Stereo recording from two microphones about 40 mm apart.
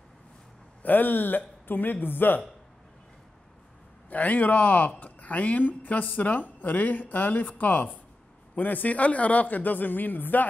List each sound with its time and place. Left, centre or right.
0.8 s speech: left
4.1 s speech: left